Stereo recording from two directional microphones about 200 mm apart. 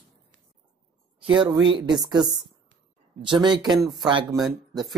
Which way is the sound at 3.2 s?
20° right (ahead or behind).